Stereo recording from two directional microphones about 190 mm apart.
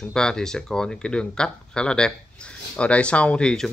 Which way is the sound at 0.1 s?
5° left (ahead or behind).